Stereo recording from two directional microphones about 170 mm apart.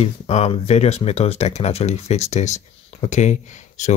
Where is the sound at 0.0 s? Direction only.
40° left (ahead or behind).